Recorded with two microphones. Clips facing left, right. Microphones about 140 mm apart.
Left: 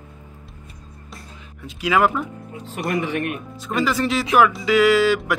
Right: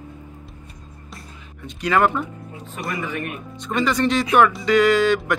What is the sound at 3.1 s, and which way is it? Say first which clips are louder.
Speech: left 4 dB; 70° left (ahead or behind).